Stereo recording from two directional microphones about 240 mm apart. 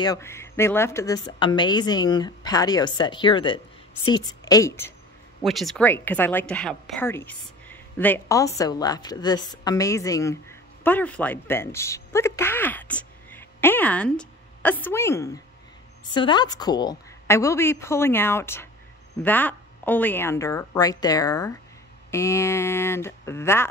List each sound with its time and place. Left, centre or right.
0.0 s a woman's voice: centre
5.4 s a woman's voice: centre